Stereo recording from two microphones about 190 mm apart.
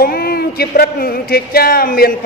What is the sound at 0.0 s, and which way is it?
Speech, 55° left (ahead or behind).